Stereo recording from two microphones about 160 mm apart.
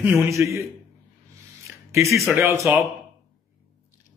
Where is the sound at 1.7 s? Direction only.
20° right (ahead or behind).